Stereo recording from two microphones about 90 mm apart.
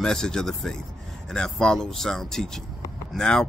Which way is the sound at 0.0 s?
5° left (ahead or behind).